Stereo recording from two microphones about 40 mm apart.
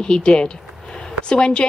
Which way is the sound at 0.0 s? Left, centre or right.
Left.